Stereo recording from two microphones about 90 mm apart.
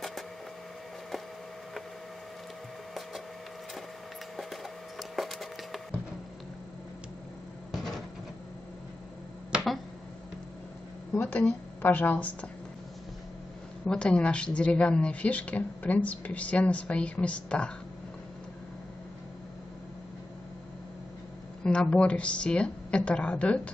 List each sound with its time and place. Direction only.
4.4 s a sound: centre (ahead or behind)
7.7 s cupboard open or close: centre (ahead or behind)
11.1 s a woman's voice: 15° left (ahead or behind)
13.8 s a woman's voice: 10° left (ahead or behind)
21.6 s a woman's voice: 10° left (ahead or behind)